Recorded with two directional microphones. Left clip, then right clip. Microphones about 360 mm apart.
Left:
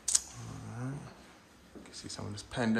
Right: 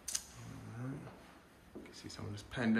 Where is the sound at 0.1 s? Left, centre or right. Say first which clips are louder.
Left 10 dB; centre.